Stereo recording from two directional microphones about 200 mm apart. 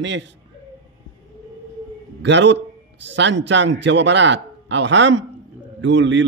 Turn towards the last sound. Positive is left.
turn(degrees=-65)  # may be behind; listen again after turning